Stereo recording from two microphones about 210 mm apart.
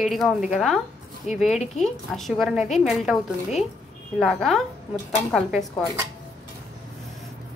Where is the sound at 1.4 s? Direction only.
35° left (ahead or behind).